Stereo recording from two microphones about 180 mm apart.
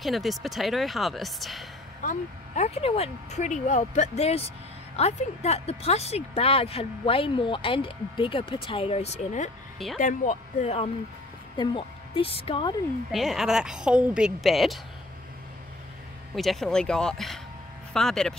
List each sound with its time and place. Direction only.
0.0 s a woman's voice: centre (ahead or behind)
2.0 s speech: 40° left (ahead or behind)
11.5 s speech: 25° left (ahead or behind)
13.1 s a woman's voice: centre (ahead or behind)
16.3 s a woman's voice: centre (ahead or behind)